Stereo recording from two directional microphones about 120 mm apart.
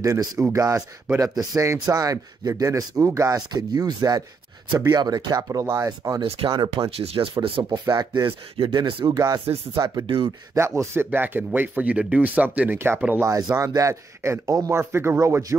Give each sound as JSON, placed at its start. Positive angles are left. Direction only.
{"t": 0.0, "sound": "speech", "side_deg": -25}
{"t": 6.2, "sound": "speech", "side_deg": -55}
{"t": 6.5, "sound": "speech", "side_deg": -35}
{"t": 7.0, "sound": "speech", "side_deg": -50}
{"t": 7.8, "sound": "speech", "side_deg": -35}
{"t": 10.0, "sound": "speech", "side_deg": -50}
{"t": 10.8, "sound": "speech", "side_deg": -20}